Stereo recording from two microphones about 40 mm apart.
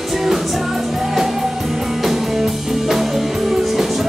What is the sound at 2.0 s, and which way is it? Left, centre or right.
Music, centre.